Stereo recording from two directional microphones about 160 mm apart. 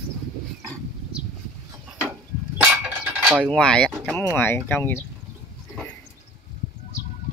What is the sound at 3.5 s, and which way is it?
Speech, 5° left (ahead or behind).